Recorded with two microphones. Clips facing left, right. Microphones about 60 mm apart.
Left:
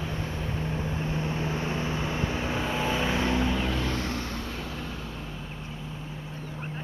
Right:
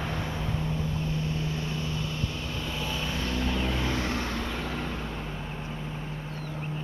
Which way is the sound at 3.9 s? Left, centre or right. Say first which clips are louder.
Right 2 dB; right.